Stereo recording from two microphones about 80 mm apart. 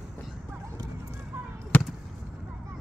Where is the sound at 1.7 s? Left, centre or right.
Centre.